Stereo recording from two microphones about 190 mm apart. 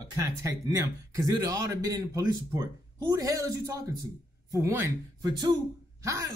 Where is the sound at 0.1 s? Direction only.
15° right (ahead or behind).